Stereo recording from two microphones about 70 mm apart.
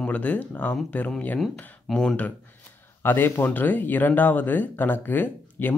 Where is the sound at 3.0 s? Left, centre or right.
Left.